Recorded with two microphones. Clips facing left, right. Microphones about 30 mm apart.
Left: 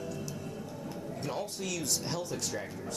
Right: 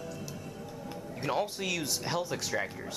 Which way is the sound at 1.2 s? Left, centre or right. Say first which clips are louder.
Right 6 dB; right.